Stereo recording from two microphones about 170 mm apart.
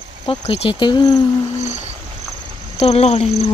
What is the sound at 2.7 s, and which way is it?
Speech, 40° left (ahead or behind).